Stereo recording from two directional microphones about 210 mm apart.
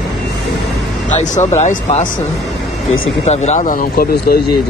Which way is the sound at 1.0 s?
35° left (ahead or behind).